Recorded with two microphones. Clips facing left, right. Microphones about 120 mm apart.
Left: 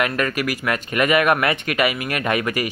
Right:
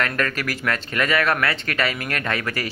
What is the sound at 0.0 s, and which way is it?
Speech, 10° left (ahead or behind).